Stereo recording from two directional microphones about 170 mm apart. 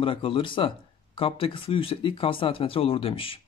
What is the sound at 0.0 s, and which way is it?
Speech, 30° left (ahead or behind).